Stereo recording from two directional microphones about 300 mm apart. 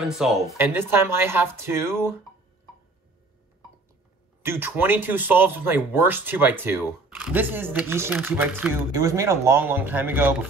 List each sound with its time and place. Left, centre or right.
0.0 s speech: centre
4.5 s speech: centre